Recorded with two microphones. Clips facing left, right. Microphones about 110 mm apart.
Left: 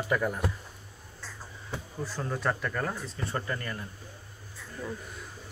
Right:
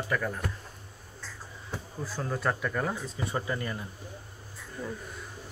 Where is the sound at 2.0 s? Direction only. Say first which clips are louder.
Even; 5° right (ahead or behind).